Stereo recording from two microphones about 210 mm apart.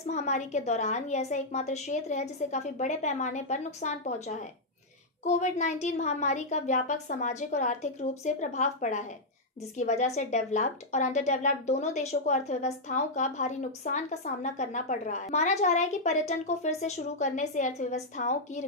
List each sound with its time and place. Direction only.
0.0 s a woman's voice: 35° left (ahead or behind)